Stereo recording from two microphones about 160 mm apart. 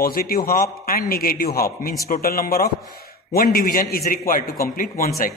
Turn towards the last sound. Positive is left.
turn(degrees=60)  # may be behind; listen again after turning